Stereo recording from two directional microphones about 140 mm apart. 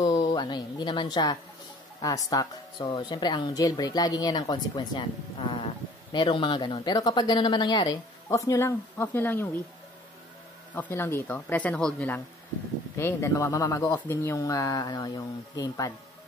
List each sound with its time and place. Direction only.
0.0 s a woman's voice: 30° left (ahead or behind); by 9.6 s 15° left (ahead or behind)
10.7 s speech: 15° left (ahead or behind)
12.9 s speech: 20° left (ahead or behind)